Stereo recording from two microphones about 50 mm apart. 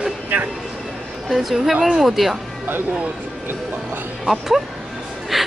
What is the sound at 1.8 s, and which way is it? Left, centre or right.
Speech, centre.